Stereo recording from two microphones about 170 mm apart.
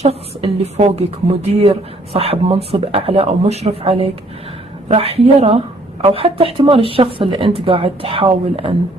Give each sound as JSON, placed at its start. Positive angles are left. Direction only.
{"t": 0.0, "sound": "speech", "side_deg": -35}